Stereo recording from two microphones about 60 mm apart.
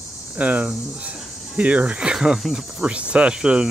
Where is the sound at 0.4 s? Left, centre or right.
Right; by 2.9 s centre.